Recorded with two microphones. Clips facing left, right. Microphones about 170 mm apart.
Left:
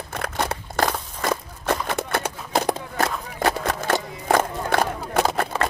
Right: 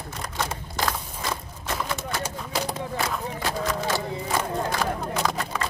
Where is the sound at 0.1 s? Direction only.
65° left (ahead or behind).